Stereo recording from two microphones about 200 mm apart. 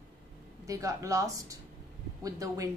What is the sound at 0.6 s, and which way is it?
A woman's voice, 15° right (ahead or behind).